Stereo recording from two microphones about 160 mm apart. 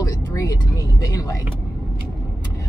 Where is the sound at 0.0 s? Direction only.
25° left (ahead or behind).